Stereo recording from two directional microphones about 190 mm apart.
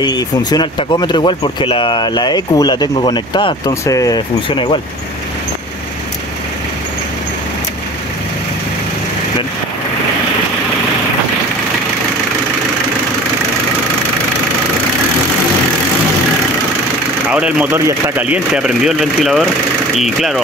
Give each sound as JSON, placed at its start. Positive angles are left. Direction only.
{"t": 0.0, "sound": "speech", "side_deg": 20}
{"t": 17.3, "sound": "speech", "side_deg": -5}